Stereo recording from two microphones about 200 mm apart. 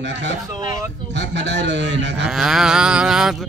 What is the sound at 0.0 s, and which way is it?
Speech, 60° right (ahead or behind).